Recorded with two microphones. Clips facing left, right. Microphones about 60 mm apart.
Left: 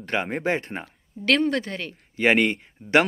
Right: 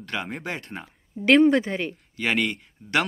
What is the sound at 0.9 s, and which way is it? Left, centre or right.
A woman's voice, centre.